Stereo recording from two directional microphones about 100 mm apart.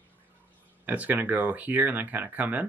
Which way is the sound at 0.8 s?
15° right (ahead or behind).